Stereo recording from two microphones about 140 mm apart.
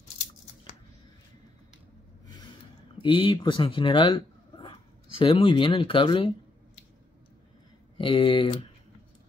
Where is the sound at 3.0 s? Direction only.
35° left (ahead or behind).